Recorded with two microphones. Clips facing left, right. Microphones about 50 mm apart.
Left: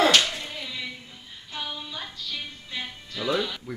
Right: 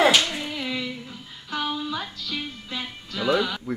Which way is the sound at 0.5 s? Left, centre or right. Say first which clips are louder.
Right 6 dB; right.